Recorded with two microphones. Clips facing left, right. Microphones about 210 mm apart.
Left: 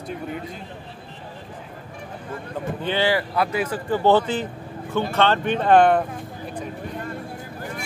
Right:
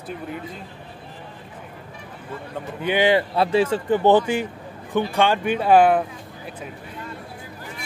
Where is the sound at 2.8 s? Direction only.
15° right (ahead or behind).